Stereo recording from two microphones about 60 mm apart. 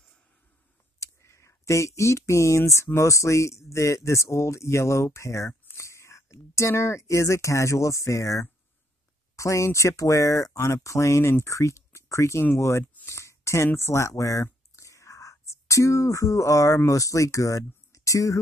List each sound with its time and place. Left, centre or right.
0.9 s speech: left
12.5 s a sound: left
13.7 s speech: left